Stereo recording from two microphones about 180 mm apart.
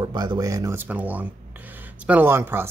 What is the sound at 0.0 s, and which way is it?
Speech, 25° right (ahead or behind).